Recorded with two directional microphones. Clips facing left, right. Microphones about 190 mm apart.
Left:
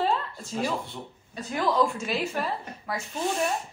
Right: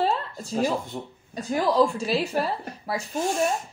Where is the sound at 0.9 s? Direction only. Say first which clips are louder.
Right 4 dB; 40° right (ahead or behind).